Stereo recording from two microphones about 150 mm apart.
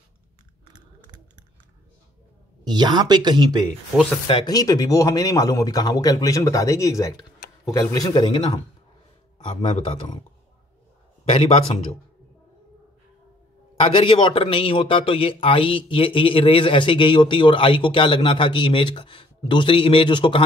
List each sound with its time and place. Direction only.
2.6 s speech: 30° right (ahead or behind)
3.9 s speech: 5° left (ahead or behind)
4.5 s a man's voice: 25° left (ahead or behind)
9.6 s a man's voice: 35° left (ahead or behind)
11.2 s a man's voice: 40° left (ahead or behind)
13.7 s a man's voice: 40° left (ahead or behind)